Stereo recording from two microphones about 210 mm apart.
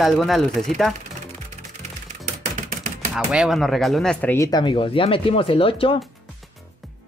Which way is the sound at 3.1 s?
Centre (ahead or behind).